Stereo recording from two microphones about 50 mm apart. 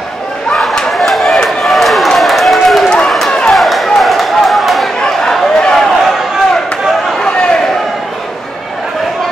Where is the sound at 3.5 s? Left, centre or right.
Centre.